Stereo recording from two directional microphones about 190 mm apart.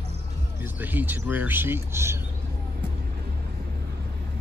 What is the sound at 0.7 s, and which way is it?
Speech, 10° right (ahead or behind).